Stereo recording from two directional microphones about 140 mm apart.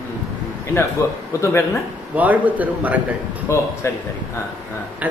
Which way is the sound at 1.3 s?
20° left (ahead or behind).